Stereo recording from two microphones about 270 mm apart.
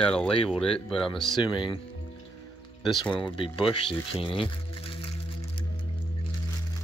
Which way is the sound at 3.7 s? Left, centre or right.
Centre.